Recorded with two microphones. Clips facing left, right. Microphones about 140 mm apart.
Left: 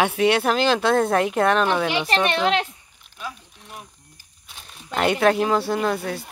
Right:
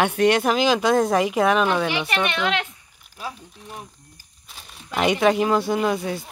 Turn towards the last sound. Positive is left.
turn(degrees=0)  # may be behind; listen again after turning